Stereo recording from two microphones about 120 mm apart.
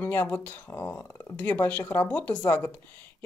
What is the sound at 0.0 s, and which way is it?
Speech, 15° left (ahead or behind).